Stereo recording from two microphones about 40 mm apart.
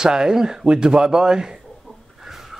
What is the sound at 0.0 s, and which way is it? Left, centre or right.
Speech, centre.